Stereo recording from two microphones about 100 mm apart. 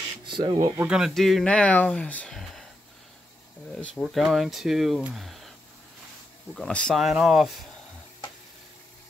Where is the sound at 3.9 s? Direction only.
Centre (ahead or behind).